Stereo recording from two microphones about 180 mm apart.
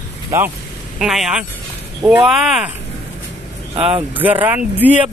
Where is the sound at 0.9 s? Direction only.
Centre (ahead or behind).